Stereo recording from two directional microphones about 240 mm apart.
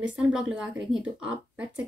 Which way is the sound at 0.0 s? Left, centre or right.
Centre.